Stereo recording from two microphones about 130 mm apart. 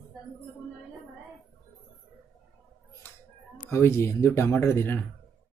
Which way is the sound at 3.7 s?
20° left (ahead or behind).